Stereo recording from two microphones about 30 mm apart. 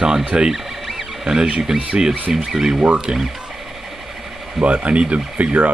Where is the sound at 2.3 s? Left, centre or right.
Right.